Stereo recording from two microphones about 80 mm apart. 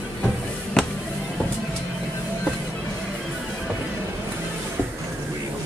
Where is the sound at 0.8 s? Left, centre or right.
Centre.